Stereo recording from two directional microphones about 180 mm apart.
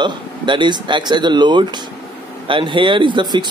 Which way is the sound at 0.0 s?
25° right (ahead or behind).